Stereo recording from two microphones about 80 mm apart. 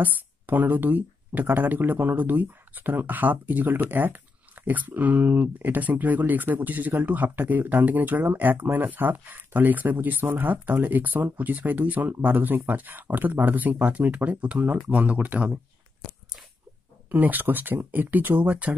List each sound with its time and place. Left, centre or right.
0.0 s speech: right
17.1 s speech: right